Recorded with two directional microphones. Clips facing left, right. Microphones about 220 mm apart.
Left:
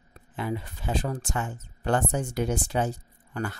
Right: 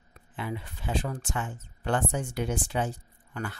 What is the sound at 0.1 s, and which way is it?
Speech, 40° left (ahead or behind).